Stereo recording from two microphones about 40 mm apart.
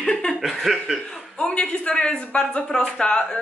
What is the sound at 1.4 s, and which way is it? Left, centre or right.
Speech, left.